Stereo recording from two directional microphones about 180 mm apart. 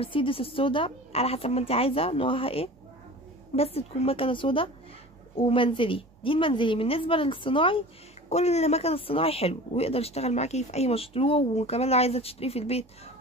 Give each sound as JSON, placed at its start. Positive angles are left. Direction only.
{"t": 0.0, "sound": "a woman's voice", "side_deg": 30}